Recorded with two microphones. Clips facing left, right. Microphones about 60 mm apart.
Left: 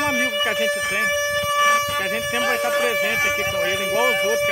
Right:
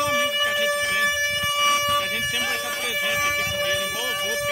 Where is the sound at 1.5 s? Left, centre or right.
Left.